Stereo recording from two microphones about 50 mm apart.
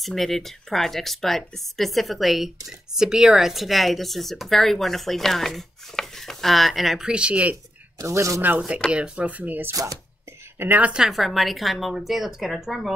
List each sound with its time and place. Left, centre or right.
0.0 s speech: centre
7.1 s speech: right
8.0 s speech: right
8.4 s speech: right
8.9 s speech: right
10.8 s speech: right
11.1 s speech: centre